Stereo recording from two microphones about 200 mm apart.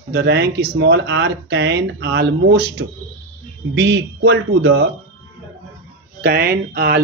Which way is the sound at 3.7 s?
60° right (ahead or behind).